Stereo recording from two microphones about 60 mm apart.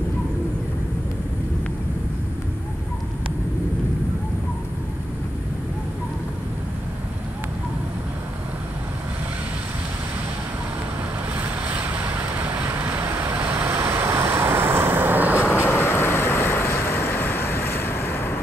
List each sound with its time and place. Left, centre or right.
11.3 s vehicle: right
12.7 s vehicle: right
13.7 s vehicle: right
15.7 s vehicle: left